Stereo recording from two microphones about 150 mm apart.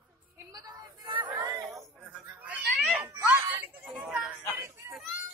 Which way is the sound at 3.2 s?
10° right (ahead or behind).